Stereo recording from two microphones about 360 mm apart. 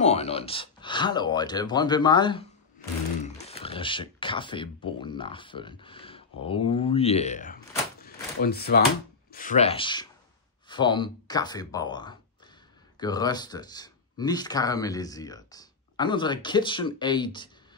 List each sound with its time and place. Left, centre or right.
0.0 s speech: centre
3.4 s speech: centre
8.0 s a sound: left
9.3 s speech: left